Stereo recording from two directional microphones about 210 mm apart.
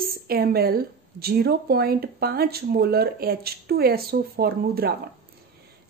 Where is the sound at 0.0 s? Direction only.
45° right (ahead or behind).